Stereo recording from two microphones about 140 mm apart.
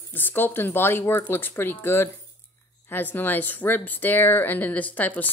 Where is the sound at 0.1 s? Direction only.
15° left (ahead or behind).